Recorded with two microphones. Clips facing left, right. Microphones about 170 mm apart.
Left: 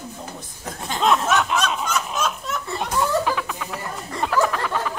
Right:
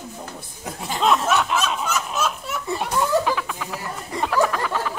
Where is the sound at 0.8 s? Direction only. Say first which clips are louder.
Even; centre (ahead or behind).